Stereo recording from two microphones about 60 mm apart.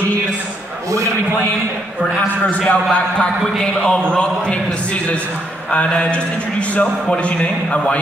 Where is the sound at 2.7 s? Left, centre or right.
Centre.